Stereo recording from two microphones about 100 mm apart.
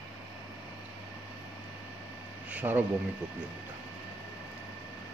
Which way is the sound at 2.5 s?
15° right (ahead or behind).